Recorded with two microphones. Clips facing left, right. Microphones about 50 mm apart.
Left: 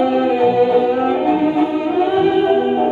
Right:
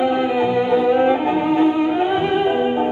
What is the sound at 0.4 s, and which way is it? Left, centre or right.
Music, right.